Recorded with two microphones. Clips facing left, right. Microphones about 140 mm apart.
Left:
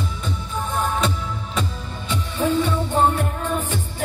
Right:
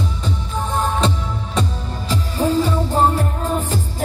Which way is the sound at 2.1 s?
35° right (ahead or behind).